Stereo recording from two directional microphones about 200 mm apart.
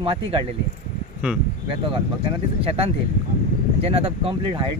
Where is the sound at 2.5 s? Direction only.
30° right (ahead or behind).